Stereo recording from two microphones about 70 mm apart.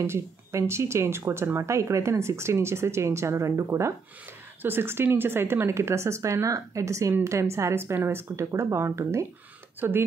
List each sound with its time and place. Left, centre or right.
0.0 s speech: right
4.6 s speech: right